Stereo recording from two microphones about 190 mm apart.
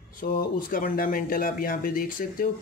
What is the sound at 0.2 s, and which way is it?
Speech, 45° left (ahead or behind).